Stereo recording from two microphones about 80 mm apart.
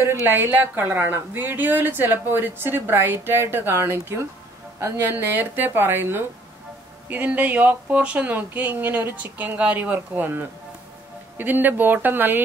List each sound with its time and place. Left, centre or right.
0.0 s a woman's voice: right